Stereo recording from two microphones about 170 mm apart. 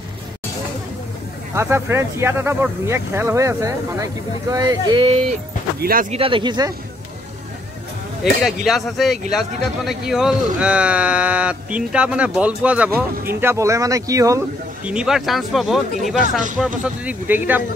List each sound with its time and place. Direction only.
1.5 s speech: 15° right (ahead or behind)
5.8 s speech: 60° right (ahead or behind)
6.1 s speech: 30° right (ahead or behind)
8.2 s speech: centre (ahead or behind); by 14.4 s 20° right (ahead or behind)
14.9 s speech: 5° right (ahead or behind)